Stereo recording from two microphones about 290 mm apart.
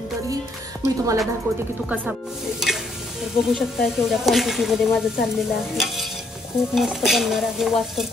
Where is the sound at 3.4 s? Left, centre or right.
Centre.